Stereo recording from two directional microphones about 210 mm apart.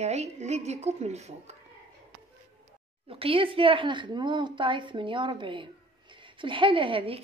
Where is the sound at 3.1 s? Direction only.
25° right (ahead or behind).